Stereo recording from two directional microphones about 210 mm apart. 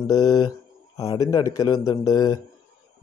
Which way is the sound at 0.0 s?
15° left (ahead or behind).